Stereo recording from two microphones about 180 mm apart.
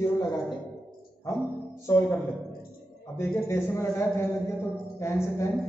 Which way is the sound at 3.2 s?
15° left (ahead or behind).